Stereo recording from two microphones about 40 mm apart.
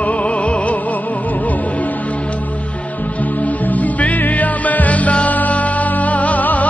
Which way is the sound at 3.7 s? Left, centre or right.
Left.